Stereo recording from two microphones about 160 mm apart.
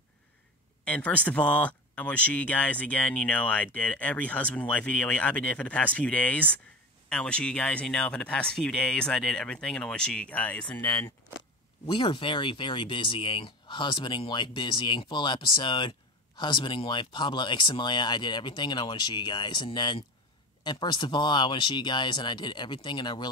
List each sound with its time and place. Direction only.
0.8 s speech: 10° left (ahead or behind)
11.8 s speech: 30° left (ahead or behind)